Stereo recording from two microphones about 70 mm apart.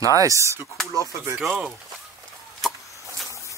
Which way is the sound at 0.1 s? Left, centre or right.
Right.